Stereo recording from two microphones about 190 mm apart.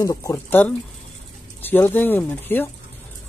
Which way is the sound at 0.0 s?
15° left (ahead or behind).